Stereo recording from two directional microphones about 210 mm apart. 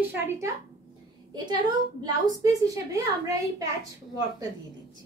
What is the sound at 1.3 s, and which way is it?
A woman's voice, 20° right (ahead or behind).